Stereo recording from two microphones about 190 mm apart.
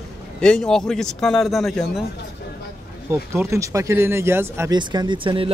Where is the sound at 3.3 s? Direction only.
15° right (ahead or behind).